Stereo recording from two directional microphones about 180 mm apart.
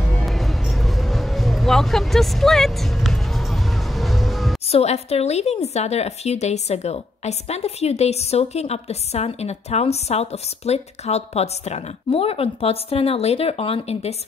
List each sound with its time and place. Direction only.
0.1 s music: centre (ahead or behind)
4.6 s a woman's voice: 35° left (ahead or behind)